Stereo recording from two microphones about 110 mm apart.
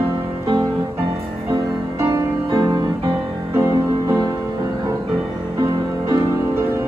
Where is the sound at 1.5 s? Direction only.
30° right (ahead or behind).